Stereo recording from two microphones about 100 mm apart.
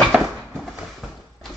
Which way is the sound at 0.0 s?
Centre (ahead or behind).